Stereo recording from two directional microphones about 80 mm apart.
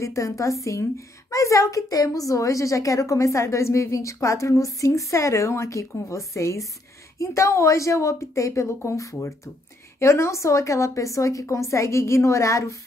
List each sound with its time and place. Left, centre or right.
0.0 s a woman's voice: left